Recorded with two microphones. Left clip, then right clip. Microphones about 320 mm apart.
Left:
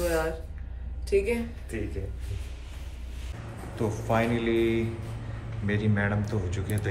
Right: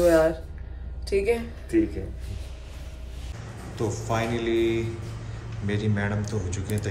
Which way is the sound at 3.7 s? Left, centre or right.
Centre.